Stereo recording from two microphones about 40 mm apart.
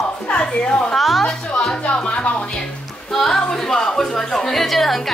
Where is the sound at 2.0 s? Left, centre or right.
Left.